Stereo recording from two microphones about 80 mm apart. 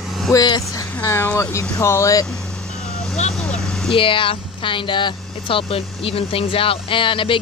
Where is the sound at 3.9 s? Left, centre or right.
Left.